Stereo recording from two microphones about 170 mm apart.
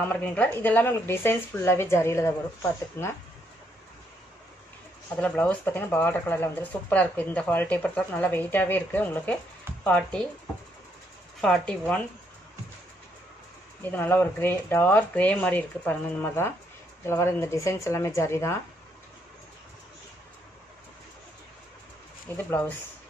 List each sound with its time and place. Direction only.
0.0 s speech: 10° left (ahead or behind)
5.1 s speech: 10° left (ahead or behind)
11.4 s speech: 5° left (ahead or behind)
13.9 s speech: 10° left (ahead or behind)
22.5 s speech: 10° left (ahead or behind)